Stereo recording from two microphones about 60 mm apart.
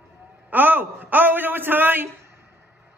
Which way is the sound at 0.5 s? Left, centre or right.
Right.